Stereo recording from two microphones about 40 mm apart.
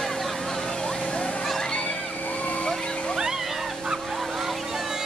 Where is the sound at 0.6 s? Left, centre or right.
Centre.